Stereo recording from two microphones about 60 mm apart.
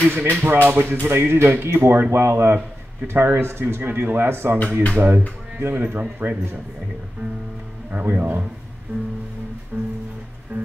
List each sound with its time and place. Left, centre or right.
0.1 s speech: right
8.0 s speech: right
9.7 s music: right